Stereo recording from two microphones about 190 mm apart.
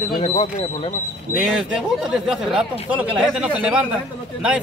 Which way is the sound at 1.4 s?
5° right (ahead or behind).